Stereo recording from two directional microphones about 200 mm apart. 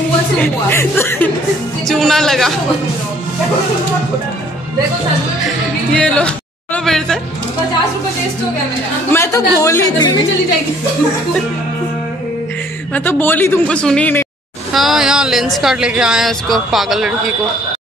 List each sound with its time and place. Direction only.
0.4 s speech: 10° left (ahead or behind)
5.9 s speech: 5° left (ahead or behind)
9.1 s speech: 15° left (ahead or behind)
12.9 s speech: 10° left (ahead or behind)